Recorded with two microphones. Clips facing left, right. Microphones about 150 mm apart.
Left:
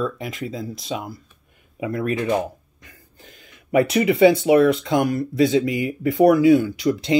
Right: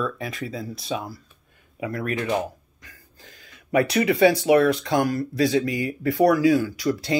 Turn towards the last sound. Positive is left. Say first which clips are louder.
# left 4 dB
turn(degrees=20)  # may be behind; listen again after turning